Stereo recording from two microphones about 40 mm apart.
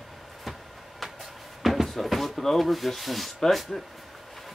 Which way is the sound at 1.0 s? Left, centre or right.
Centre.